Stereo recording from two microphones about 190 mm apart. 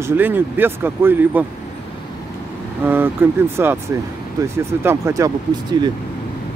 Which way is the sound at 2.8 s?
10° right (ahead or behind).